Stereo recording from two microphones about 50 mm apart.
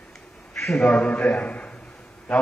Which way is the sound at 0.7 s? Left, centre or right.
Left.